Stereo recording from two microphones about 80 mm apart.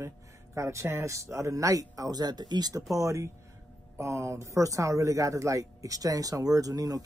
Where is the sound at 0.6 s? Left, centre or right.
Right.